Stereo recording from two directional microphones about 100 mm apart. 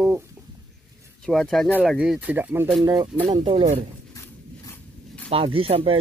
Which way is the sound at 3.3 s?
55° right (ahead or behind).